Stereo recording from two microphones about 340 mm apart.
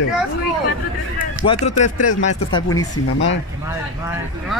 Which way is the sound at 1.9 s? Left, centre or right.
Left.